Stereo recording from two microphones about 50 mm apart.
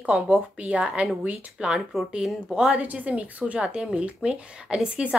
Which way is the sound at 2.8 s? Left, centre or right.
Right.